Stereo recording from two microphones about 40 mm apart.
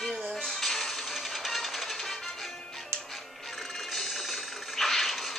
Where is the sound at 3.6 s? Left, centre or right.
Centre.